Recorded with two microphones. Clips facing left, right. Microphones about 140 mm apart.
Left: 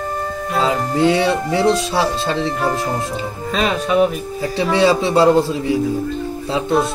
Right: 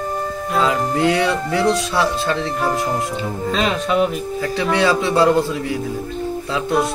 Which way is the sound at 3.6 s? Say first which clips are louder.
Left 3 dB; 10° left (ahead or behind).